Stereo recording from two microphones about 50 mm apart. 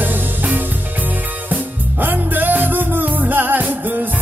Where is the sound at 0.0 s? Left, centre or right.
Right.